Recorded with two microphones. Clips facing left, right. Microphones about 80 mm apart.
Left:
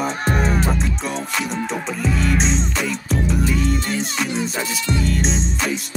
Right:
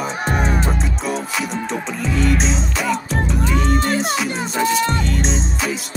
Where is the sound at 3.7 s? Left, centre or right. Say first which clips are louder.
Right 4 dB; right.